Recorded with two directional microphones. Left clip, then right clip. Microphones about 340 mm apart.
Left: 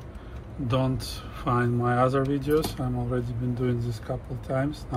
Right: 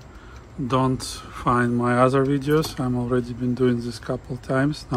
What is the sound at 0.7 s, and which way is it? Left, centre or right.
Speech, centre.